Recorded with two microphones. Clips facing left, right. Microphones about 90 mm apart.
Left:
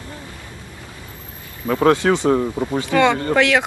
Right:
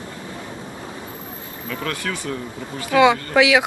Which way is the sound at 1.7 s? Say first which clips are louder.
Left 12 dB; 40° left (ahead or behind).